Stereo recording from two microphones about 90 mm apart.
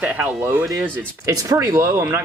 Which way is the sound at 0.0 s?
15° right (ahead or behind).